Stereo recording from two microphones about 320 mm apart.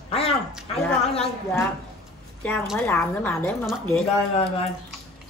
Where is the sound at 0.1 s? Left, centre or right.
Centre.